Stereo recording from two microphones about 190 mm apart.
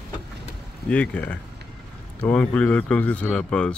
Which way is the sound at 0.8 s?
5° left (ahead or behind).